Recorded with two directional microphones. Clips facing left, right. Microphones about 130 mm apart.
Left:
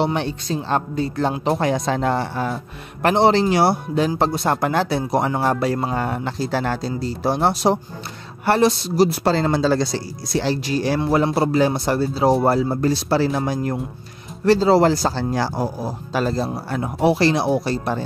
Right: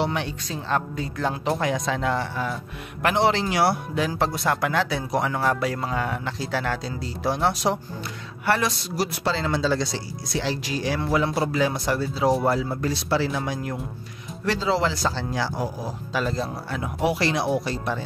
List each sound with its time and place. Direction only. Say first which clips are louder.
0.0 s speech: left 5 dB; 30° left (ahead or behind)
9.2 s speech: left 6 dB; 45° left (ahead or behind)